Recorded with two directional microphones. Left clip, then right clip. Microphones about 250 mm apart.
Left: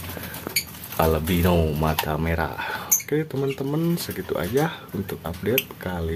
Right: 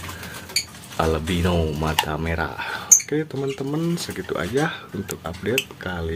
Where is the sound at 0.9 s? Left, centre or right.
Centre.